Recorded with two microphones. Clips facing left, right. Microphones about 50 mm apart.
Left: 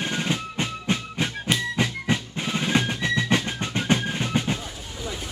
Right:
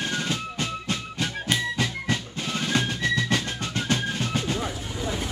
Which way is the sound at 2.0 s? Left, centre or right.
Centre.